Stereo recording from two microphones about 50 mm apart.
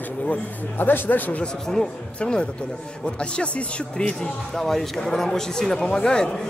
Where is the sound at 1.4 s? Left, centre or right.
Centre.